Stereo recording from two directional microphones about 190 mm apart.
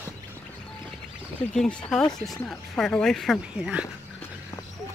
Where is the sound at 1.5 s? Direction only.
5° left (ahead or behind).